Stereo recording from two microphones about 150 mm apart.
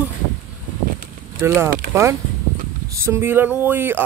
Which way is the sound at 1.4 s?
15° right (ahead or behind).